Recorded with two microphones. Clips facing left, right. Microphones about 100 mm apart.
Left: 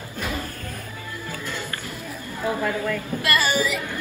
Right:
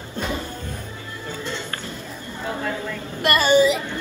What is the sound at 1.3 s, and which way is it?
Music, 25° right (ahead or behind).